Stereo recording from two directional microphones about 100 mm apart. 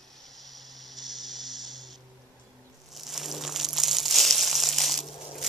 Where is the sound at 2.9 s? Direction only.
Centre (ahead or behind).